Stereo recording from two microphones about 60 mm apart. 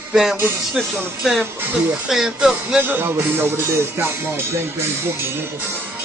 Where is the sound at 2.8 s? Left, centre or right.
Right.